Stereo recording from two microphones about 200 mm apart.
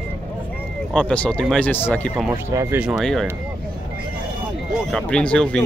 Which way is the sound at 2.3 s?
10° right (ahead or behind).